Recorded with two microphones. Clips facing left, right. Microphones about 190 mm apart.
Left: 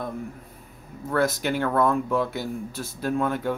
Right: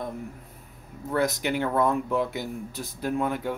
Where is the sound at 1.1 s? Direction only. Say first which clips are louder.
Left 2 dB; 15° right (ahead or behind).